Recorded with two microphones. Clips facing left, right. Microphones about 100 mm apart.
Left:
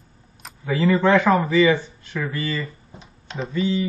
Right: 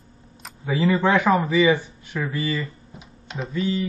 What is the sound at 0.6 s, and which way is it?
Speech, 15° right (ahead or behind).